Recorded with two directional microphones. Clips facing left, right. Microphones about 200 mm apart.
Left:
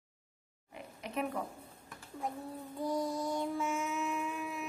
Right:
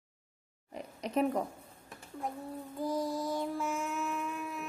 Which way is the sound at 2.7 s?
Centre (ahead or behind).